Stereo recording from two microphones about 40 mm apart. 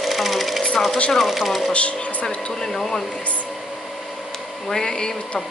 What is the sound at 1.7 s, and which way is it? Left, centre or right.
Speech, left.